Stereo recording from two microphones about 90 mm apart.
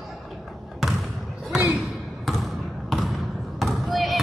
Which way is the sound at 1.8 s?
Centre (ahead or behind).